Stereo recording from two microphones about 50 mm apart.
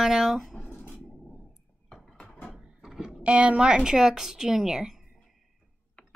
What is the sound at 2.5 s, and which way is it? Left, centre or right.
Drawer open or close, centre.